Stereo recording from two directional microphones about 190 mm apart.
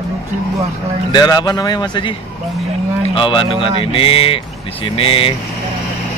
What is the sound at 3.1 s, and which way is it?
Speech, 25° left (ahead or behind).